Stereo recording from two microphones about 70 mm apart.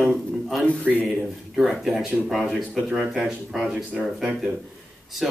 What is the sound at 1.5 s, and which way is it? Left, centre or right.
Speech, centre.